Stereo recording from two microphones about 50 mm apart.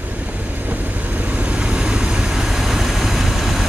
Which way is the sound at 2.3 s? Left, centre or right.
Centre.